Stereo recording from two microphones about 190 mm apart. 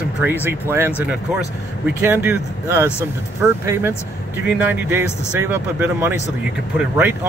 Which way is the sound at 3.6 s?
15° right (ahead or behind).